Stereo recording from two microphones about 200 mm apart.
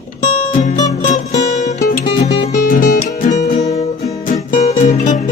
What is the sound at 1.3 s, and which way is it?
Music, 35° left (ahead or behind).